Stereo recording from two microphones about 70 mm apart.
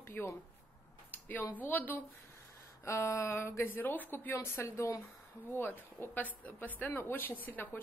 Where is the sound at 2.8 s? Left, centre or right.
Left.